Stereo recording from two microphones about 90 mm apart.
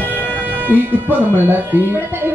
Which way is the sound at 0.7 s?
20° right (ahead or behind).